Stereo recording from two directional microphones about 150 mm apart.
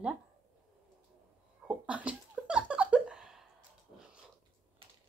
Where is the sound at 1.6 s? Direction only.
10° right (ahead or behind).